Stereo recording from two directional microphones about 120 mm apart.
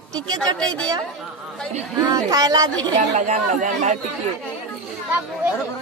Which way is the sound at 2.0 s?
30° right (ahead or behind).